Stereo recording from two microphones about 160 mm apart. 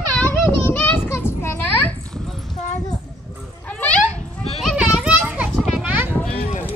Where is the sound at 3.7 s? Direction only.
10° left (ahead or behind).